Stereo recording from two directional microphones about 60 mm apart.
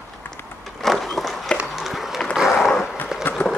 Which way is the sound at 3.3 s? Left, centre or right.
Left.